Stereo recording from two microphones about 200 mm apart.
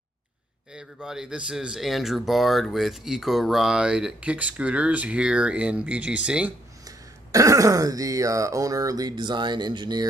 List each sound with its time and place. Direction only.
0.7 s speech: 5° right (ahead or behind)
7.3 s speech: 15° right (ahead or behind)